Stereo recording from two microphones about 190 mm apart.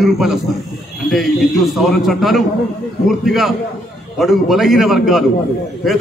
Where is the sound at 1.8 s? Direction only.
Centre (ahead or behind).